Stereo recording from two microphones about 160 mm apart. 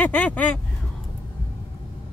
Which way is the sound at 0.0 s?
10° left (ahead or behind).